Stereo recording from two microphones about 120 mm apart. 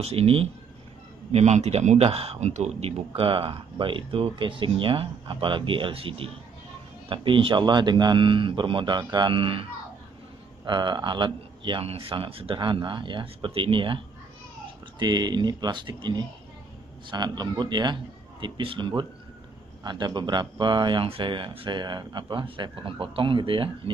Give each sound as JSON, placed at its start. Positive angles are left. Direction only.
{"t": 0.0, "sound": "speech", "side_deg": -55}
{"t": 1.3, "sound": "speech", "side_deg": -65}
{"t": 3.2, "sound": "speech", "side_deg": -45}